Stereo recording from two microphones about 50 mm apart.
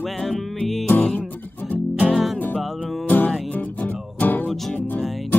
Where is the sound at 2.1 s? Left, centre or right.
Centre.